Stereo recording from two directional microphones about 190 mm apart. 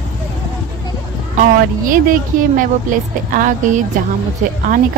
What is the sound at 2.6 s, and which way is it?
Speech, 45° right (ahead or behind).